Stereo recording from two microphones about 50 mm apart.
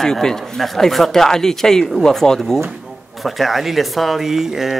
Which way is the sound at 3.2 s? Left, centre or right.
Centre.